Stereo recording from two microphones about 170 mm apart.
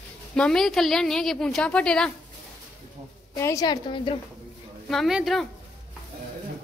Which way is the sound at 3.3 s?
20° left (ahead or behind).